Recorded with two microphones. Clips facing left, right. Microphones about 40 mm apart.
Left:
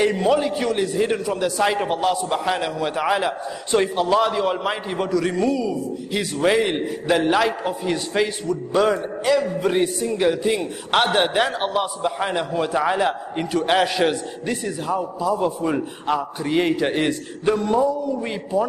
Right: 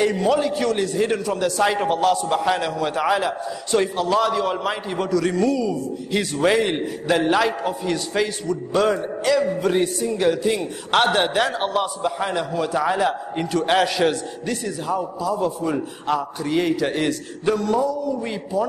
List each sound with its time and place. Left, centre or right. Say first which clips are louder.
0.0 s a man's voice: left 1 dB; centre
6.1 s a man's voice: even; centre; by 17.1 s left
17.5 s a sound: left 1 dB; centre
18.5 s a man's voice: left 1 dB; centre